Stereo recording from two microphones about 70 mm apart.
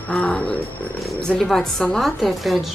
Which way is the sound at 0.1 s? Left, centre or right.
Centre.